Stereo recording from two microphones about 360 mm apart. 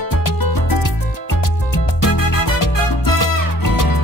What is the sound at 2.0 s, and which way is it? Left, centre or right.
Music, left.